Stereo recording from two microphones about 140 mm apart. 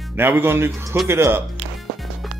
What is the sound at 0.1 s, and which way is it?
Speech, 15° right (ahead or behind).